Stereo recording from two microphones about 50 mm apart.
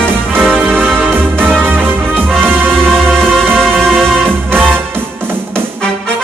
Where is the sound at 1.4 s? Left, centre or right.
Centre.